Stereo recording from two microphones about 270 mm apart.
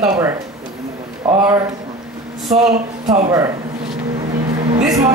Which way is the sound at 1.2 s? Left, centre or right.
Centre.